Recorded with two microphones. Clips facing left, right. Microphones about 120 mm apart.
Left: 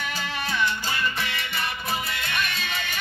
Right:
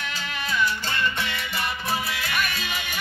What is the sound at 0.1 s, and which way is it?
Music, 35° left (ahead or behind).